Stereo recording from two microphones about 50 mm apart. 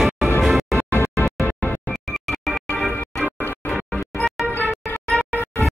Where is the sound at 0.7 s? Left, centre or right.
Left.